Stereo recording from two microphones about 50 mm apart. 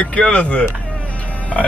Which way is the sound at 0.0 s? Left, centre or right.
Left.